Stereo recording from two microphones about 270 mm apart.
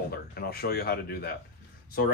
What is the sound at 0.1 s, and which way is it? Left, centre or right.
Speech, left.